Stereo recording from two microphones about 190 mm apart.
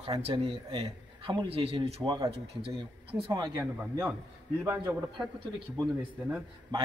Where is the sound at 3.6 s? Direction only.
10° right (ahead or behind).